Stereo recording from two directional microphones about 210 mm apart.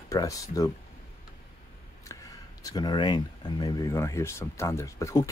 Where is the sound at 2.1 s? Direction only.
15° left (ahead or behind).